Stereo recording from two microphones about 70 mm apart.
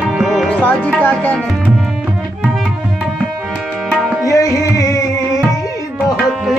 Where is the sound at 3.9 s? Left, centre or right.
Centre.